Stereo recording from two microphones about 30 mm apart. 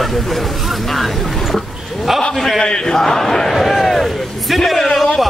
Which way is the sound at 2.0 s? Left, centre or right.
Centre.